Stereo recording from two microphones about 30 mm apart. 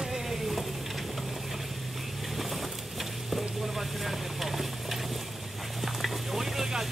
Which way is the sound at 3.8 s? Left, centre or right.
Centre.